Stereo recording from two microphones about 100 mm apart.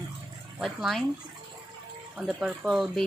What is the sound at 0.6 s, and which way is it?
Speech, centre (ahead or behind).